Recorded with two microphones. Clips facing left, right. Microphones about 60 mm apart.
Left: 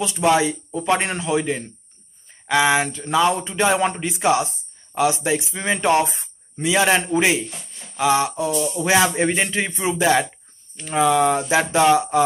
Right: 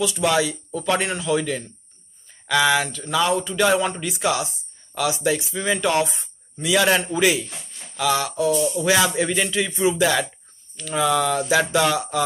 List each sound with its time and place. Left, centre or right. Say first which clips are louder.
0.0 s speech: left 2 dB; left